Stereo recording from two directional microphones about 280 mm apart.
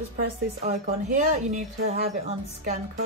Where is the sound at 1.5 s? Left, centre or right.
Right.